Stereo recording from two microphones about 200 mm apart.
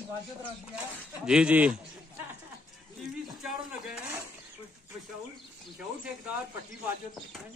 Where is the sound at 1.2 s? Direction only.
5° right (ahead or behind).